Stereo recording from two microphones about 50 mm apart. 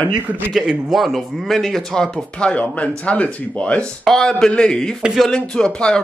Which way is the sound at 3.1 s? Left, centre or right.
Left.